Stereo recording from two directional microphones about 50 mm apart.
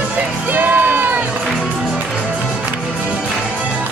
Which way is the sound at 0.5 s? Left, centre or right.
Right.